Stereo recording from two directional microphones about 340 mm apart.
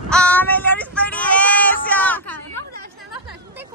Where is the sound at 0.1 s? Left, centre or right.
Centre.